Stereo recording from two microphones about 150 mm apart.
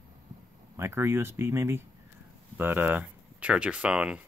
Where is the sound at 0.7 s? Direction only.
15° right (ahead or behind).